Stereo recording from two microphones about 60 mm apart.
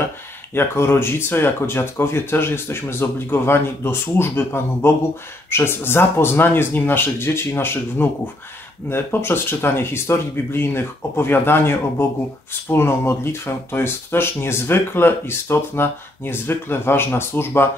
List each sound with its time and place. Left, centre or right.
0.6 s speech: left